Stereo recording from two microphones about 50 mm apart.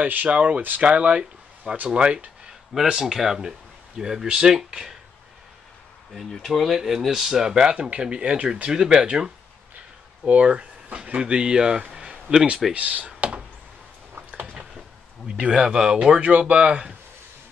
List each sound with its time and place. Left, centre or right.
0.0 s speech: right
0.6 s speech: right
0.8 s speech: right
2.7 s speech: centre
6.1 s speech: centre
11.9 s a sound: centre
12.7 s speech: right
15.2 s speech: centre